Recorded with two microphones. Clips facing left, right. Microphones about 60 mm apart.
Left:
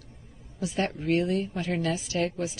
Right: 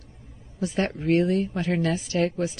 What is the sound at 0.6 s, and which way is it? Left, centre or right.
Speech, right.